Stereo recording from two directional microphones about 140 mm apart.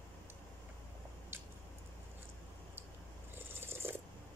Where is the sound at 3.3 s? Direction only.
15° right (ahead or behind).